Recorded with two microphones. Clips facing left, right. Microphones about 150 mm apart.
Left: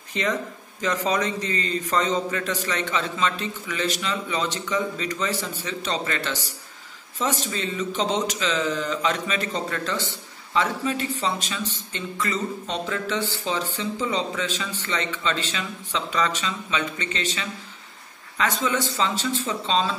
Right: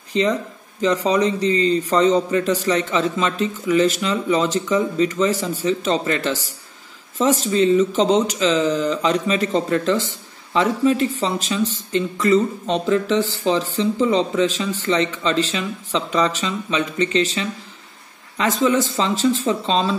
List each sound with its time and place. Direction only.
0.7 s speech: 35° right (ahead or behind)
7.2 s speech: 40° right (ahead or behind)